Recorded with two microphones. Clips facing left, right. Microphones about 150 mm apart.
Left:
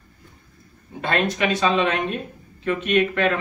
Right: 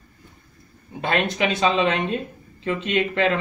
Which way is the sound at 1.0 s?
20° right (ahead or behind).